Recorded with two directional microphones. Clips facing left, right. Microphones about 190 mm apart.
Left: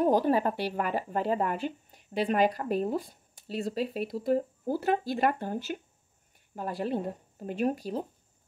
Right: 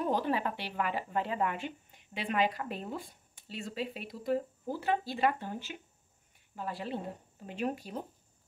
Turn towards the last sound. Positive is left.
turn(degrees=40)  # may be behind; listen again after turning